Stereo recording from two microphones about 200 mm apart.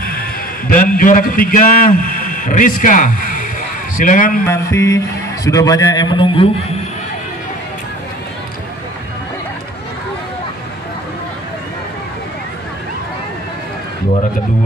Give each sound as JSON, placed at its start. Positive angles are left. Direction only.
{"t": 0.7, "sound": "a man's voice", "side_deg": 45}
{"t": 4.5, "sound": "a man's voice", "side_deg": 15}